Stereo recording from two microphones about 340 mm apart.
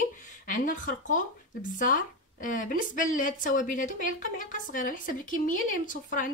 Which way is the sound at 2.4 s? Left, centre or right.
Left.